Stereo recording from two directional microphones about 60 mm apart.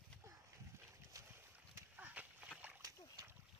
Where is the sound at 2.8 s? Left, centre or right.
Right.